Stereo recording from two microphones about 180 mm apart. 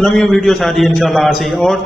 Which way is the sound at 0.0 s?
Centre (ahead or behind).